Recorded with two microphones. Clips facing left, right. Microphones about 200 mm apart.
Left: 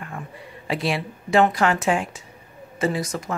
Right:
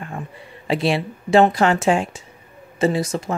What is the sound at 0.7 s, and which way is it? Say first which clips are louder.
Speech: right 5 dB; 25° right (ahead or behind).